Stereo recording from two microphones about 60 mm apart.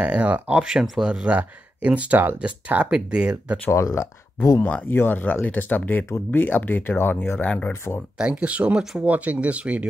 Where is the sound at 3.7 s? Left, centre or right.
Left.